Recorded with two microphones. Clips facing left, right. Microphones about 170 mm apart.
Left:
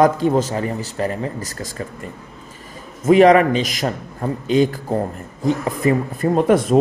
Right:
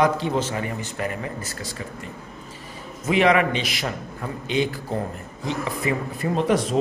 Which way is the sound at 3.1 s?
40° left (ahead or behind).